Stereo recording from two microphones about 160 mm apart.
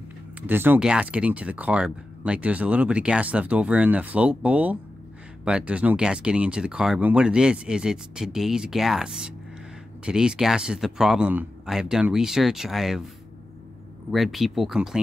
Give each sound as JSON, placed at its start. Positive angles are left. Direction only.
{"t": 0.5, "sound": "speech", "side_deg": -10}
{"t": 14.1, "sound": "speech", "side_deg": 0}